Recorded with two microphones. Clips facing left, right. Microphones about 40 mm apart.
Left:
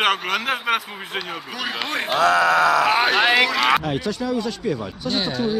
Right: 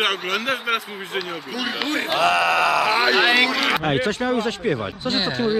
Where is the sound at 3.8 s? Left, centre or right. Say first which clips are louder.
Right 3 dB; right.